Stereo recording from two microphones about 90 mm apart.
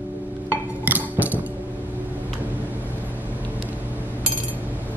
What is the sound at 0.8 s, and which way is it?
Music, 20° right (ahead or behind).